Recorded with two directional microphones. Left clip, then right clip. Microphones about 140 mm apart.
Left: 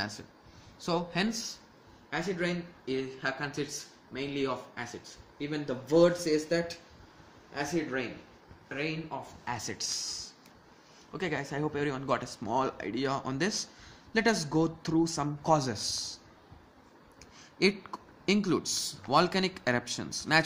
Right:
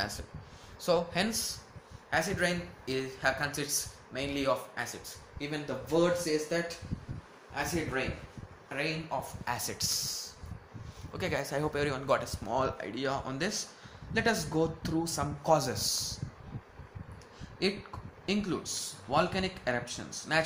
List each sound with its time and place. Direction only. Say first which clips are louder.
0.7 s speech: right 3 dB; 30° left (ahead or behind)
2.0 s speech: right 3 dB; 5° left (ahead or behind)
5.9 s speech: left 4 dB; 50° left (ahead or behind)
7.5 s speech: left 1 dB; 35° left (ahead or behind)
8.6 s speech: right 1 dB; 25° left (ahead or behind); by 16.2 s 40° left (ahead or behind)
17.6 s speech: left 5 dB; 50° left (ahead or behind)